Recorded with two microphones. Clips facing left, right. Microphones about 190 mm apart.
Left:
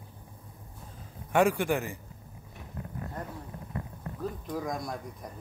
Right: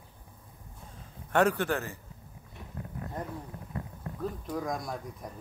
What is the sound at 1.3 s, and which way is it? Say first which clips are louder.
Speech: left 1 dB; 10° left (ahead or behind).